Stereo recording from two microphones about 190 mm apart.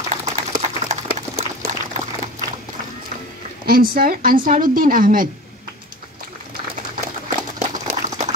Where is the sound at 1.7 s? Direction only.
40° right (ahead or behind).